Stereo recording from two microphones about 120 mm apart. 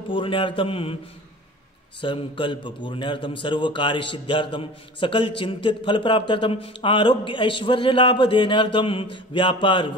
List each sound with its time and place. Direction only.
0.1 s a man's voice: 45° left (ahead or behind)
2.0 s a man's voice: 45° left (ahead or behind)